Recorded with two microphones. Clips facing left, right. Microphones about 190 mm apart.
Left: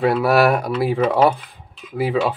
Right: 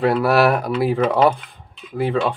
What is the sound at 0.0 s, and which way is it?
Speech, centre (ahead or behind).